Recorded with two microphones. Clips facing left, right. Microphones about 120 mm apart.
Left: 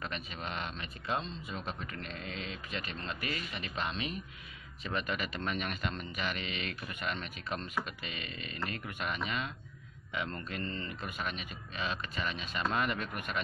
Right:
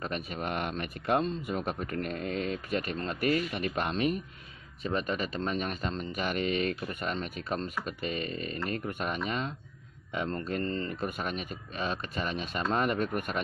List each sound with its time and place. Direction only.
0.0 s speech: 50° right (ahead or behind)
4.8 s speech: 35° right (ahead or behind)